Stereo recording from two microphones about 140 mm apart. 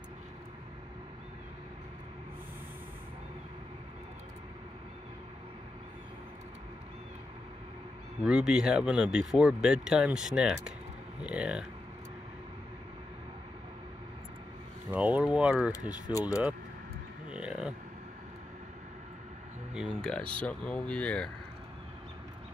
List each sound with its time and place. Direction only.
8.2 s speech: 5° right (ahead or behind)
14.9 s speech: 10° right (ahead or behind)
16.1 s speech: 25° left (ahead or behind)
17.3 s a sound: 5° right (ahead or behind)
19.7 s speech: centre (ahead or behind)